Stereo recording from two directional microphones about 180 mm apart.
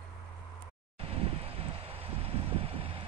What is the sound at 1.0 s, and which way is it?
Vehicle, 35° right (ahead or behind).